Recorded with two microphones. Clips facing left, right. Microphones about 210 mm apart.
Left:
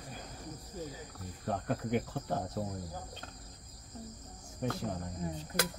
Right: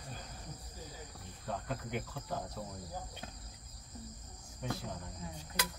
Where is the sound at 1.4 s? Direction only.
55° left (ahead or behind).